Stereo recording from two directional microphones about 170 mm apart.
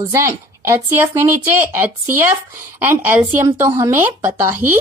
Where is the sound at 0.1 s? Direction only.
15° right (ahead or behind).